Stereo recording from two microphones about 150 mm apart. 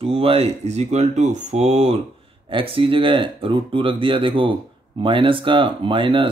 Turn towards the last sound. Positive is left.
turn(degrees=-35)  # may be behind; listen again after turning